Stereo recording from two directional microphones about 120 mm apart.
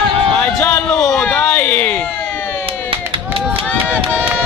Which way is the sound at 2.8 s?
50° right (ahead or behind).